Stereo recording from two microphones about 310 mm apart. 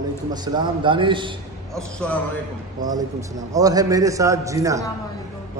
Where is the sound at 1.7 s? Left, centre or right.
Centre.